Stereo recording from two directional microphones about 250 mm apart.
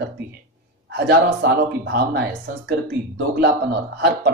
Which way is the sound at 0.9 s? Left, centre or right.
Right.